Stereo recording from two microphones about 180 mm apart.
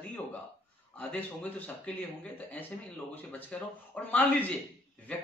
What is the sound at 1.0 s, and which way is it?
Speech, 5° left (ahead or behind).